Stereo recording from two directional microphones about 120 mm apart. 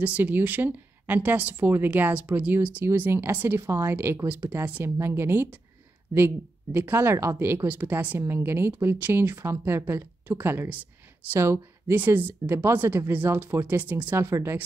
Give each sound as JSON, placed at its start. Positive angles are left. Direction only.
{"t": 0.0, "sound": "speech", "side_deg": -15}